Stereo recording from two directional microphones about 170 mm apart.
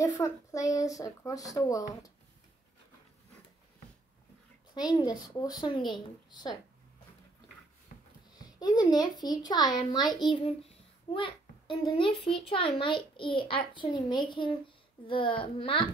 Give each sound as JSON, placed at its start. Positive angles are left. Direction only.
{"t": 0.0, "sound": "a child's voice", "side_deg": 20}
{"t": 4.7, "sound": "a child's voice", "side_deg": 25}
{"t": 8.4, "sound": "a child's voice", "side_deg": 25}